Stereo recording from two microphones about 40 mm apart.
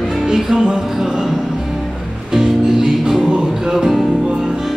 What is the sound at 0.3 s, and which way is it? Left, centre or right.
Music, centre.